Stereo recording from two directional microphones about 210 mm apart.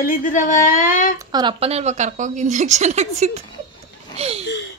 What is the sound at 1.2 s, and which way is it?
Speech, 20° right (ahead or behind).